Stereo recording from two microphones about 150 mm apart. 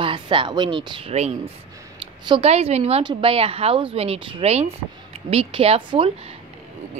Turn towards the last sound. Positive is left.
turn(degrees=-40)  # may be behind; listen again after turning